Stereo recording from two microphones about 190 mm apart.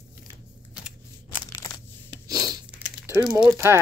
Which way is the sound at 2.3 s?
20° right (ahead or behind).